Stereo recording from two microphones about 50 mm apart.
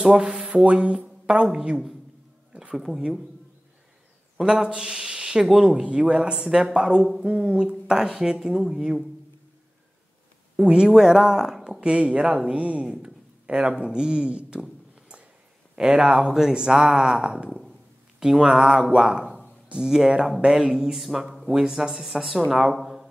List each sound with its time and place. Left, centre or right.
0.0 s speech: centre
2.7 s speech: centre
4.4 s speech: centre
10.5 s speech: centre
13.5 s speech: right
14.6 s a sound: right
15.7 s speech: centre